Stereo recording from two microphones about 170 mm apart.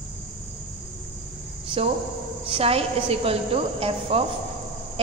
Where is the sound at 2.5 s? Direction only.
35° right (ahead or behind).